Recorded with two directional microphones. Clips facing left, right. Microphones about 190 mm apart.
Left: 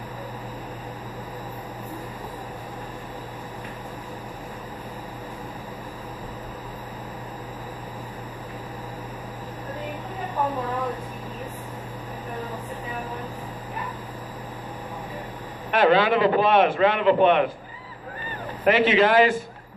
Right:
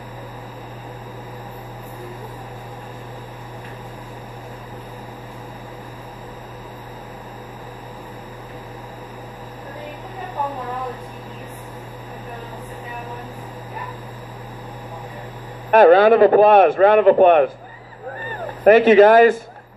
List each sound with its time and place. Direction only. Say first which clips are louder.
15.7 s a man's voice: right 8 dB; 45° right (ahead or behind)
18.6 s a man's voice: right 9 dB; 45° right (ahead or behind)